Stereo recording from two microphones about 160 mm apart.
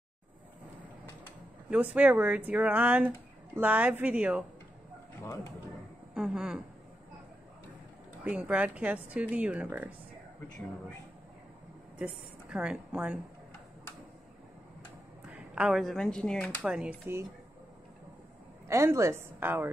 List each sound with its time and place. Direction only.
2.0 s speech: 10° right (ahead or behind)
5.2 s speech: 20° left (ahead or behind)
6.1 s speech: 5° right (ahead or behind)
8.2 s speech: 10° right (ahead or behind)
12.0 s a woman's voice: 5° right (ahead or behind)
15.2 s a woman's voice: 5° right (ahead or behind)
16.6 s speech: 5° right (ahead or behind)
18.7 s speech: 15° right (ahead or behind)